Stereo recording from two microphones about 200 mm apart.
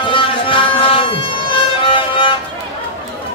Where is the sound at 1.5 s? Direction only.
25° left (ahead or behind).